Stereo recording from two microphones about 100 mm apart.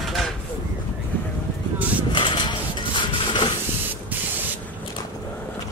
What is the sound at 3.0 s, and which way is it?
Printer, 55° left (ahead or behind).